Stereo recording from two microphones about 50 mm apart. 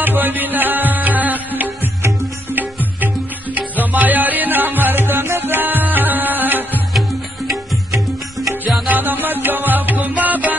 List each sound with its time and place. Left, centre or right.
0.0 s music: right
3.9 s music: right
8.8 s music: right